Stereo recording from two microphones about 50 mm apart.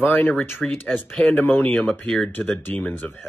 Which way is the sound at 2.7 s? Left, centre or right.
Left.